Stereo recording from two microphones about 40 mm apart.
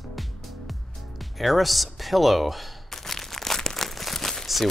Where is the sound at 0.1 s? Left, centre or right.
Centre.